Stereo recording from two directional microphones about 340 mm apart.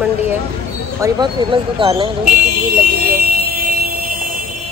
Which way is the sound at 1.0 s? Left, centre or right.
Centre.